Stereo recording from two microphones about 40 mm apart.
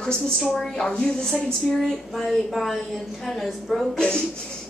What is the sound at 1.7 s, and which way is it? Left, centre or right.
Speech, centre.